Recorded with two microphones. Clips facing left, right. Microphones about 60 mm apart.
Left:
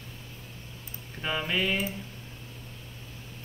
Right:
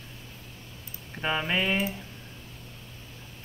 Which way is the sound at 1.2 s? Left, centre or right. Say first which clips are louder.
Right 2 dB; centre.